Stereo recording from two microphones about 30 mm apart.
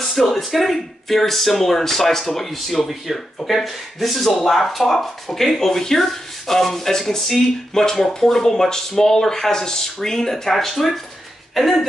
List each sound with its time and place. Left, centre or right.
0.0 s speech: centre
10.5 s speech: centre
11.5 s a sound: centre